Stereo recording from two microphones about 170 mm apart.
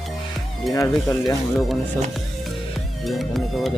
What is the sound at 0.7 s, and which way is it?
Speech, 20° left (ahead or behind).